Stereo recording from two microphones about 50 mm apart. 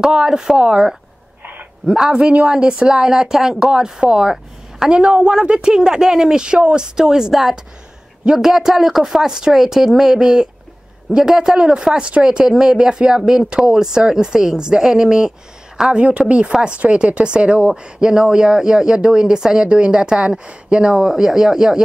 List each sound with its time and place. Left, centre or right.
0.0 s speech: centre
1.4 s a sound: right
1.9 s a woman's voice: centre